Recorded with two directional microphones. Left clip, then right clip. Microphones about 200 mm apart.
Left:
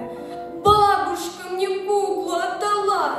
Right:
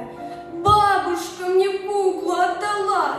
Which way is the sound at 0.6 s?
40° left (ahead or behind).